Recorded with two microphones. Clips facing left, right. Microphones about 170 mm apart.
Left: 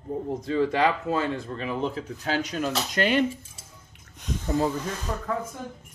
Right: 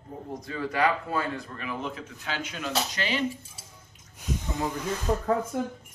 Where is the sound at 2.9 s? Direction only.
55° left (ahead or behind).